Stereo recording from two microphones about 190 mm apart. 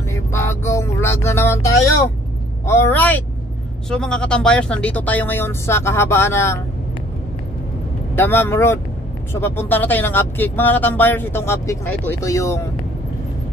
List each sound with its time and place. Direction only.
0.1 s music: 15° left (ahead or behind)
2.6 s speech: 10° left (ahead or behind)
8.2 s speech: 10° left (ahead or behind)